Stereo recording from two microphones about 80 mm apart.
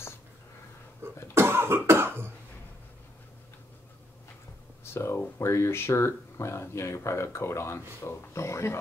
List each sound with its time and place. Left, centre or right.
1.3 s cough: right
4.9 s speech: left